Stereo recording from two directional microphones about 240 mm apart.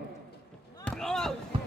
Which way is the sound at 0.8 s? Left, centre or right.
Centre.